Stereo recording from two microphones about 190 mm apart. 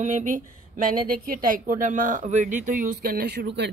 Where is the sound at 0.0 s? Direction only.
40° right (ahead or behind).